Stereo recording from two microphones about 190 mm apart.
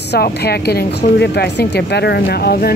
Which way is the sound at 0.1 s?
55° left (ahead or behind).